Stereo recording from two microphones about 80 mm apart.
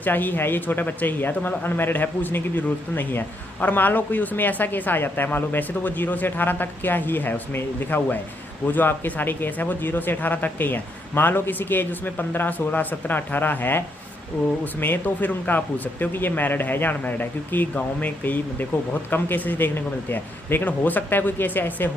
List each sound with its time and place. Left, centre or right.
0.0 s speech: left